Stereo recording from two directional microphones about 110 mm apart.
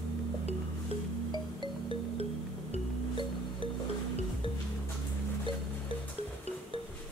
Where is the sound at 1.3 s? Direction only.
45° left (ahead or behind).